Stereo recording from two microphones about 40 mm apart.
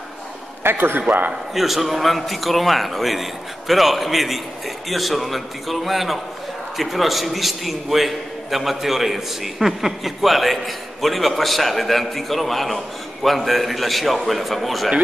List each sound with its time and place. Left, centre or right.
0.7 s a man's voice: right
1.0 s a man's voice: right
1.5 s a man's voice: centre